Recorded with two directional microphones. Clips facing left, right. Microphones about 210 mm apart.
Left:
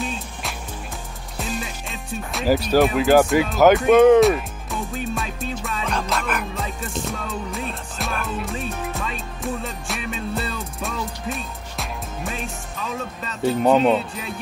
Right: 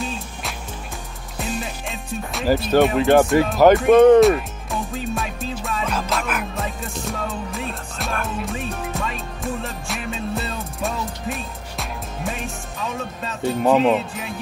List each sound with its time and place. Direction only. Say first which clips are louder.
2.4 s speech: even; 10° left (ahead or behind)
2.8 s music: right 1 dB; centre (ahead or behind)
13.4 s speech: even; centre (ahead or behind)